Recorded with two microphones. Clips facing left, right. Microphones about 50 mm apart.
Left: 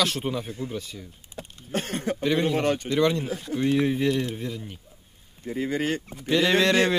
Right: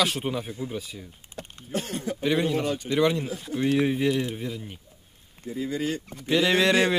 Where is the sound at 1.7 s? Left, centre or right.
Left.